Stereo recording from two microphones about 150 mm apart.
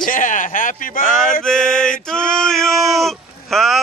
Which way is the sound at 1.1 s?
Centre (ahead or behind).